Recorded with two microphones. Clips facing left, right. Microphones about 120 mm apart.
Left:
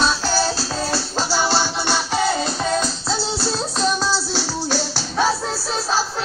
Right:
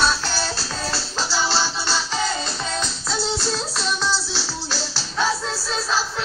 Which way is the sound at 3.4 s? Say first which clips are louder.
Left 4 dB; 40° left (ahead or behind).